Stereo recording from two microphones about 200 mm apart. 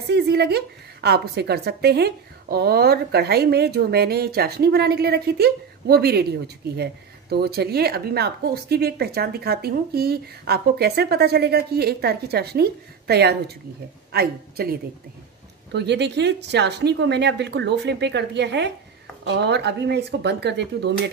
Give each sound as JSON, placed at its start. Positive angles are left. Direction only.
{"t": 0.1, "sound": "a woman's voice", "side_deg": -55}